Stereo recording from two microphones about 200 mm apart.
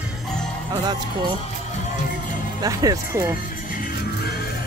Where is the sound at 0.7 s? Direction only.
20° right (ahead or behind).